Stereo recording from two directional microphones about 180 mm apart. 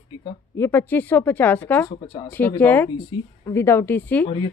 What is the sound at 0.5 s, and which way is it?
Speech, 15° left (ahead or behind).